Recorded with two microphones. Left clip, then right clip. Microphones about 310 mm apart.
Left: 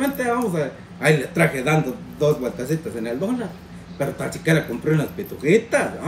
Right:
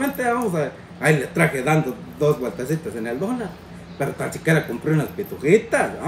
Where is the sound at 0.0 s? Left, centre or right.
Centre.